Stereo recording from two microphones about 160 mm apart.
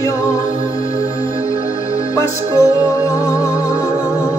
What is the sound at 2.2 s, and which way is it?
Music, 20° left (ahead or behind).